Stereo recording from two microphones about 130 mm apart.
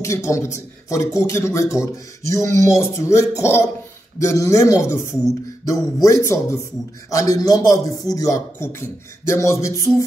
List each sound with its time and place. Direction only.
0.0 s a man's voice: 25° left (ahead or behind)